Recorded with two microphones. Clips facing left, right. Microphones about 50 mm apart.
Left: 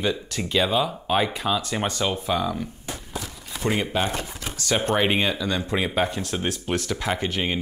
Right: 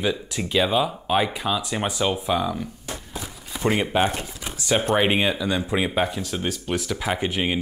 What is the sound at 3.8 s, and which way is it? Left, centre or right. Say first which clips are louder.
Speech: right 3 dB; centre.